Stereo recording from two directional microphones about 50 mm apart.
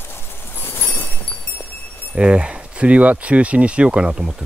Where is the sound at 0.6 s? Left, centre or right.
Left.